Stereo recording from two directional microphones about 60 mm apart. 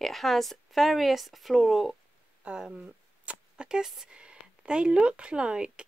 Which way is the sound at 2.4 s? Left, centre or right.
Centre.